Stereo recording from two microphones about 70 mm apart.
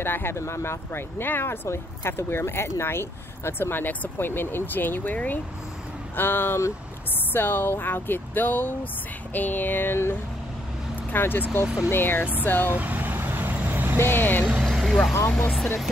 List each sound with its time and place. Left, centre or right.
0.0 s speech: left
11.6 s speech: centre
11.9 s speech: left
12.7 s vehicle: right
14.0 s speech: left
14.6 s vehicle: centre